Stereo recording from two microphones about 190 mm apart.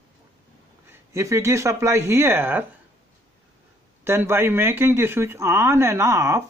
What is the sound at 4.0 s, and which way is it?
Speech, 10° right (ahead or behind).